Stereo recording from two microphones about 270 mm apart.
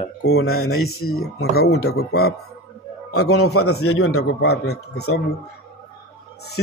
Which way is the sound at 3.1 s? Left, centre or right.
Left.